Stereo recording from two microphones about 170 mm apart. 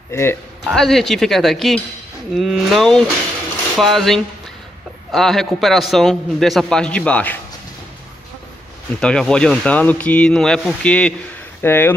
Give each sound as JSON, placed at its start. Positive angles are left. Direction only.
{"t": 0.1, "sound": "speech", "side_deg": 15}
{"t": 0.7, "sound": "a man's voice", "side_deg": 0}
{"t": 9.0, "sound": "a man's voice", "side_deg": 5}